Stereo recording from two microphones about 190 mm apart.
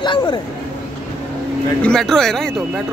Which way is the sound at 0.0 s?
25° left (ahead or behind).